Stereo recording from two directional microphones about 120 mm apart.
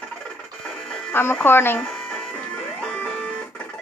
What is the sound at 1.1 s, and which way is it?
Speech, 20° left (ahead or behind).